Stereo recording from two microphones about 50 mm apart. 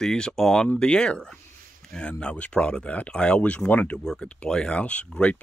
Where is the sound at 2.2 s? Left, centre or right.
Left.